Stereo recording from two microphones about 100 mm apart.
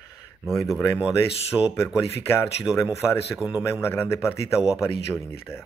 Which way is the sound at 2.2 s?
25° left (ahead or behind).